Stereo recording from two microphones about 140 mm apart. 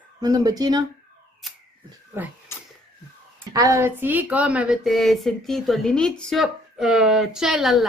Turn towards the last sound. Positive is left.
turn(degrees=0)  # may be behind; listen again after turning